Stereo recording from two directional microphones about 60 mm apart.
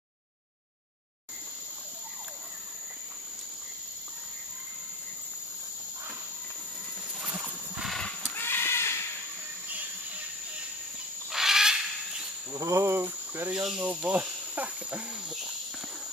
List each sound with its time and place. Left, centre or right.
7.2 s wild animals: right
8.4 s a sound: left
11.2 s bird: centre
12.5 s cricket: right
13.5 s snake: centre
13.8 s cricket: right